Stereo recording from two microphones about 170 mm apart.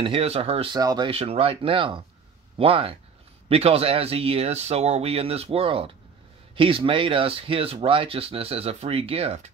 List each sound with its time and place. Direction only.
0.0 s speech: 35° right (ahead or behind)
0.7 s speech: 25° right (ahead or behind)
1.1 s speech: 35° right (ahead or behind)